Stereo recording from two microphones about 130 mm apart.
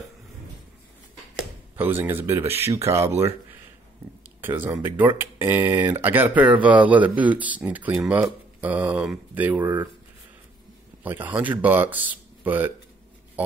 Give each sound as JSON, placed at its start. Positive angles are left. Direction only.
{"t": 1.8, "sound": "speech", "side_deg": -15}
{"t": 4.4, "sound": "speech", "side_deg": -15}
{"t": 11.1, "sound": "speech", "side_deg": -15}